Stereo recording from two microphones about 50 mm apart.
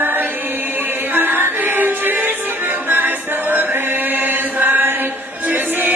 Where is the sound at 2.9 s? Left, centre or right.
Right.